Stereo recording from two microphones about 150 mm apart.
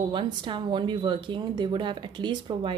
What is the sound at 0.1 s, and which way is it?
Speech, 35° right (ahead or behind).